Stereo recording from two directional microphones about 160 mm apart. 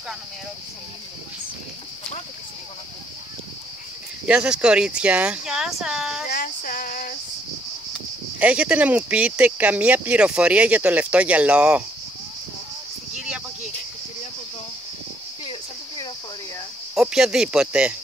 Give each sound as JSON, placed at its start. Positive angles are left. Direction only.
{"t": 4.3, "sound": "speech", "side_deg": -5}
{"t": 6.3, "sound": "female singing", "side_deg": 60}
{"t": 8.4, "sound": "speech", "side_deg": -10}
{"t": 16.9, "sound": "speech", "side_deg": -5}